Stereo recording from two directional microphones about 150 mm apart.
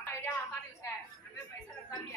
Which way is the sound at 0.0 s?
15° left (ahead or behind).